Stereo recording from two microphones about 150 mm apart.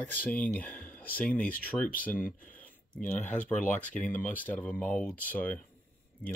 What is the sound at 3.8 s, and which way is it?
Speech, 10° left (ahead or behind).